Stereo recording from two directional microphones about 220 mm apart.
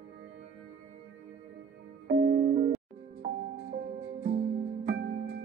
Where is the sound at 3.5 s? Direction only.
50° right (ahead or behind).